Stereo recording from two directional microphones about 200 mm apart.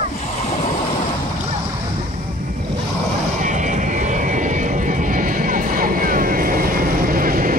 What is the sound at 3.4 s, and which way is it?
Vehicle, 40° right (ahead or behind).